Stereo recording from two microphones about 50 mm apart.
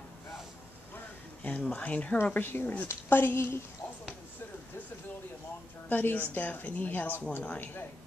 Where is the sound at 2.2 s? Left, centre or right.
Left.